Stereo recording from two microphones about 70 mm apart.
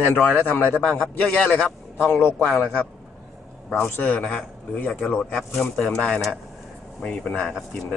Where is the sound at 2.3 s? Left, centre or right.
Centre.